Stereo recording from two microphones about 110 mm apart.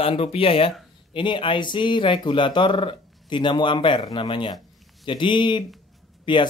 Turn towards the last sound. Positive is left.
turn(degrees=45)  # may be behind; listen again after turning